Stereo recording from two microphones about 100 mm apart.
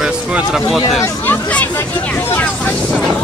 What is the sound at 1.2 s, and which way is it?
Speech, 15° left (ahead or behind).